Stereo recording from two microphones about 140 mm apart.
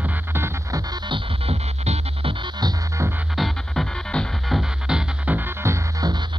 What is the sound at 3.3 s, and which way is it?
Music, centre (ahead or behind).